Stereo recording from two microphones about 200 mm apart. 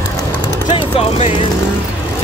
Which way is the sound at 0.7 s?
25° left (ahead or behind).